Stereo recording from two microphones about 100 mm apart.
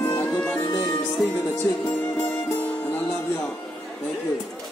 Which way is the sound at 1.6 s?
20° left (ahead or behind).